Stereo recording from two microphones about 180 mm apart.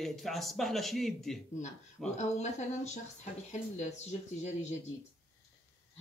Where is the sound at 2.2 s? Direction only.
40° left (ahead or behind).